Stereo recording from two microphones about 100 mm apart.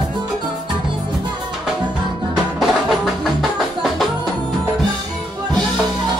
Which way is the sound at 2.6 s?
5° right (ahead or behind).